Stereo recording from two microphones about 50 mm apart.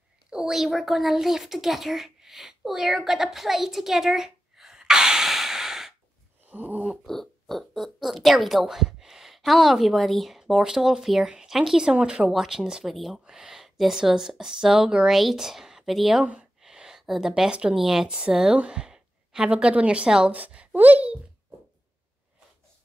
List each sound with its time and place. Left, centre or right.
0.3 s speech: centre
6.4 s a sound: right
7.1 s a woman's voice: centre
12.3 s a woman's voice: centre
12.8 s speech: centre
13.2 s a woman's voice: centre
15.0 s speech: centre
16.6 s a sound: centre
17.5 s speech: right
17.7 s a woman's voice: centre; by 20.7 s right
20.7 s a sound: right